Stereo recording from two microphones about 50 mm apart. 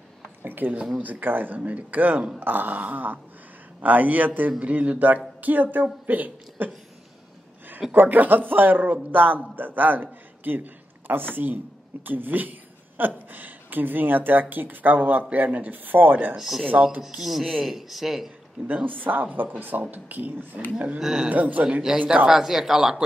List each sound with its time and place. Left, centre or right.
0.4 s a sound: right
1.0 s a woman's voice: right
7.9 s a man's voice: right
16.3 s speech: centre
16.6 s speech: right
17.0 s speech: centre
18.9 s speech: right
21.0 s speech: centre
21.3 s speech: right
22.3 s speech: centre